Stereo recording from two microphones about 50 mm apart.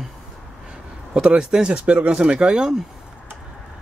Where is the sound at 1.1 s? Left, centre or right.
Right.